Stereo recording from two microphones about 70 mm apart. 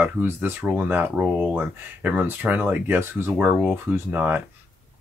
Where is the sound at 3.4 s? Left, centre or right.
Right.